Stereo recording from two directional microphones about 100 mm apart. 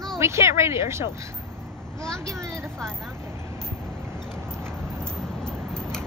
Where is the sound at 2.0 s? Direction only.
5° left (ahead or behind).